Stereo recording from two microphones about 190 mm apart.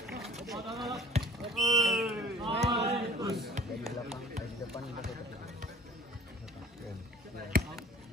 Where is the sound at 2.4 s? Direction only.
30° right (ahead or behind).